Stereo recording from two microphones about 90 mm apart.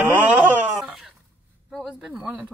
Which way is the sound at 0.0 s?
15° right (ahead or behind).